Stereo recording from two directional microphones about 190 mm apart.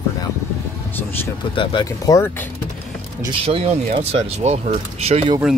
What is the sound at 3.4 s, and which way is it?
Speech, 30° right (ahead or behind).